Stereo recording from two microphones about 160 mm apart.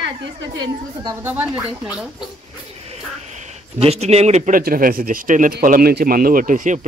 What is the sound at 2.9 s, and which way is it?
Speech, 45° right (ahead or behind).